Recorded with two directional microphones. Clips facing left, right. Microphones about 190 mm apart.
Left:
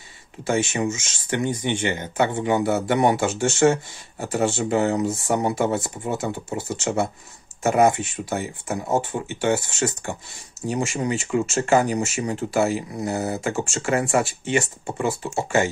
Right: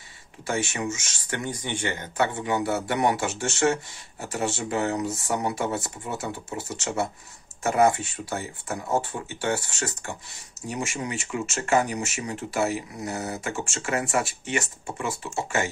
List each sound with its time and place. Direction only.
0.4 s speech: 25° left (ahead or behind)